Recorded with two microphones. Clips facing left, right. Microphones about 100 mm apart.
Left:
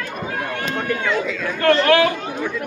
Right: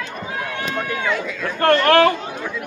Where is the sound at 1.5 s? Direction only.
50° right (ahead or behind).